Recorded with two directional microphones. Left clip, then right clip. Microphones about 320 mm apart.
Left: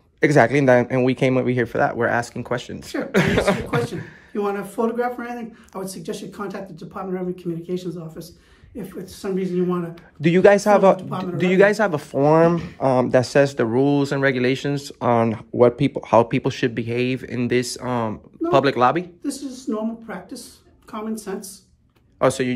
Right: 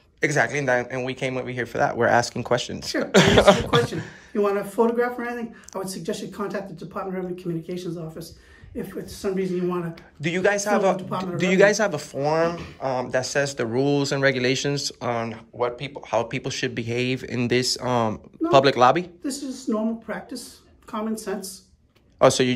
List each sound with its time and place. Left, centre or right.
0.2 s speech: centre
9.0 s speech: centre
10.2 s a man's voice: centre
22.2 s speech: centre